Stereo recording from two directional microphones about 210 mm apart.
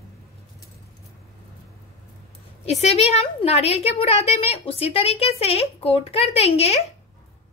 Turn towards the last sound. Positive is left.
turn(degrees=30)  # may be behind; listen again after turning